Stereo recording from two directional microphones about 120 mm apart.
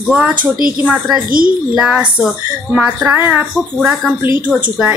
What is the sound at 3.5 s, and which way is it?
Speech, 5° left (ahead or behind).